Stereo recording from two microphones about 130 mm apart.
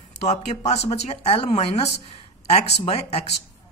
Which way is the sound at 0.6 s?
55° left (ahead or behind).